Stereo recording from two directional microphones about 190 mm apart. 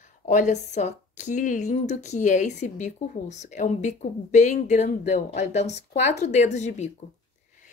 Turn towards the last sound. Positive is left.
turn(degrees=40)  # may be behind; listen again after turning